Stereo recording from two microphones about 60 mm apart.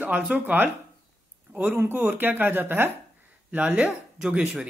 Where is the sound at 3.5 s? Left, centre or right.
Right.